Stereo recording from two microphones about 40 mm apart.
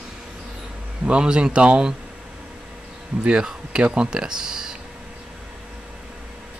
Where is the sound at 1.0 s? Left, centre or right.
Right.